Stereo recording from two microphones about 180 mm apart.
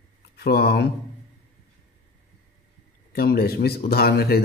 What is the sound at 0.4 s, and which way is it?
Speech, 60° left (ahead or behind).